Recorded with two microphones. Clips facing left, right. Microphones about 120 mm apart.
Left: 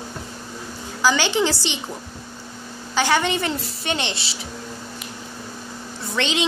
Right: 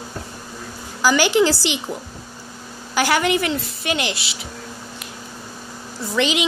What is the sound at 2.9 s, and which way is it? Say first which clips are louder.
Speech: right 1 dB; 10° right (ahead or behind).